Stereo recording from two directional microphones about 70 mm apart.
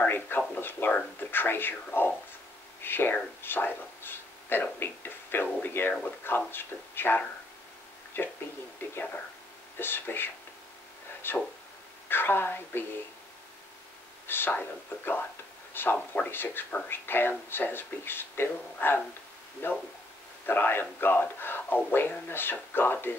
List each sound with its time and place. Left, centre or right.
0.0 s speech: left
14.2 s speech: left